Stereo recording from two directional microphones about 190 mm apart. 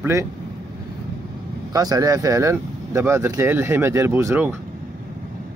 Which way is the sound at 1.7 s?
20° right (ahead or behind).